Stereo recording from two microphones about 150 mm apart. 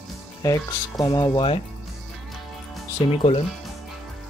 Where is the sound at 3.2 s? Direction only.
40° left (ahead or behind).